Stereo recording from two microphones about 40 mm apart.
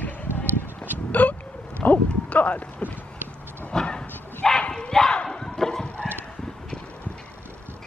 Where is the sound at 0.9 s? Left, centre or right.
Left.